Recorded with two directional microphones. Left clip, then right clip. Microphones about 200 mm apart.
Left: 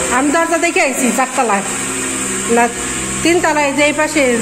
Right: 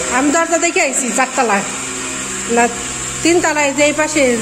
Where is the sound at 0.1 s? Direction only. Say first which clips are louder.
Even; 15° right (ahead or behind).